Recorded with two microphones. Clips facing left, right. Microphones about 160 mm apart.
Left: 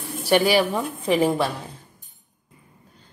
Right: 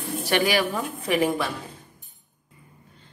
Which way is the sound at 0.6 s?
30° left (ahead or behind).